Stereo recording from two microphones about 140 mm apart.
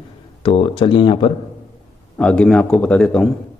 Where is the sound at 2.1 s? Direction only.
10° left (ahead or behind).